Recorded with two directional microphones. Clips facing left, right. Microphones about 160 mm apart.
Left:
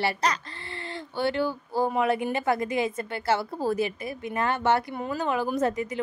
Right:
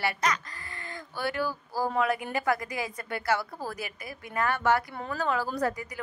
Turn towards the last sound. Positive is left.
turn(degrees=25)  # may be behind; listen again after turning